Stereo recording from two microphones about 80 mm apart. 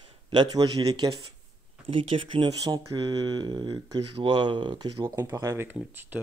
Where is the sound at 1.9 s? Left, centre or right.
Right.